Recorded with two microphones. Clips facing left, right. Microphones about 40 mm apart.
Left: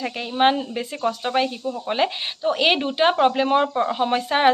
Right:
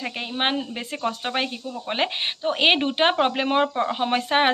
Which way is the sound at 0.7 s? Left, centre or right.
Right.